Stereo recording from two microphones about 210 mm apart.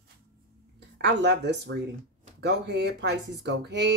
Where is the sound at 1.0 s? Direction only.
55° right (ahead or behind).